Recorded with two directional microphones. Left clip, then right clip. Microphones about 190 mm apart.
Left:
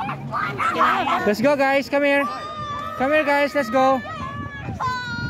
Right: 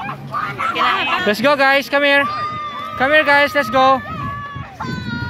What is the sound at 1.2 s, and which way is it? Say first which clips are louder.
Speech: right 7 dB; 10° left (ahead or behind).